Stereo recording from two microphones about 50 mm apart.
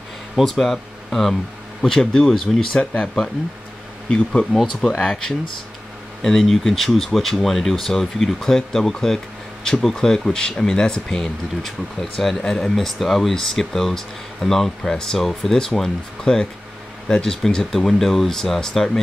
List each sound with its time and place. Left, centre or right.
0.4 s speech: centre
2.8 s speech: left
4.1 s speech: centre